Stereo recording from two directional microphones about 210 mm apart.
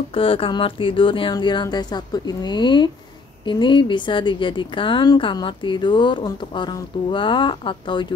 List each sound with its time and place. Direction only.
0.1 s a woman's voice: 25° left (ahead or behind)